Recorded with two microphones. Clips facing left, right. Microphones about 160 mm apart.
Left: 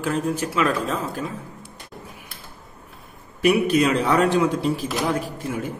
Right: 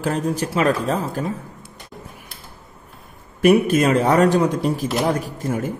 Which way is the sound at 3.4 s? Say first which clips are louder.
Right 3 dB; 45° right (ahead or behind).